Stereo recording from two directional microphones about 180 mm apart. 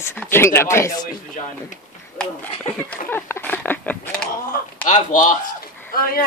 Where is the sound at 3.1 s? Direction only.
10° left (ahead or behind).